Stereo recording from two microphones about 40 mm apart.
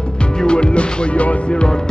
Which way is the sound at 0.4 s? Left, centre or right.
Left.